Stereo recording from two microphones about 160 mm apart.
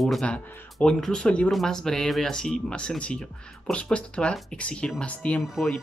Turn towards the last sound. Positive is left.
turn(degrees=0)  # may be behind; listen again after turning